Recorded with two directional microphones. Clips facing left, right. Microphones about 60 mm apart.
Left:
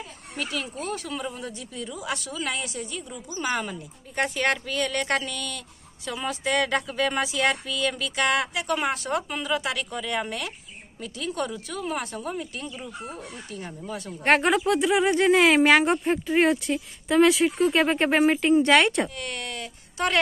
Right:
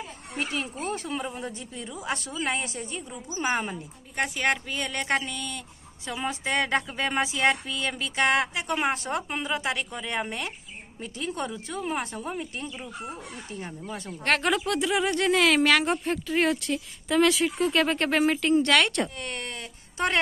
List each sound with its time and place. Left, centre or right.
0.4 s a woman's voice: right
4.1 s speech: centre
4.6 s speech: centre
14.2 s speech: centre
19.1 s a sound: right